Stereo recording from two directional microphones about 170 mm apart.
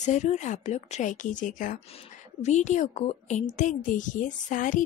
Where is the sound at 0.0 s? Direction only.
45° left (ahead or behind).